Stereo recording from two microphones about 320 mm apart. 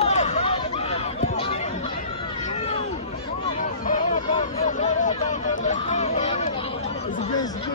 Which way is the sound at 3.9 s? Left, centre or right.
Left.